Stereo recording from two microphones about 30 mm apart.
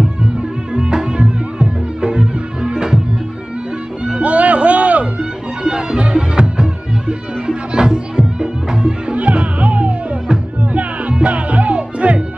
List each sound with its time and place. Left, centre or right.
0.2 s music: right
4.2 s music: right
5.6 s music: right
9.1 s music: right